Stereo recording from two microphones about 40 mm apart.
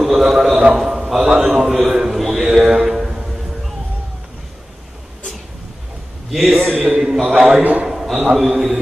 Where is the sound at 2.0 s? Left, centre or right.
Centre.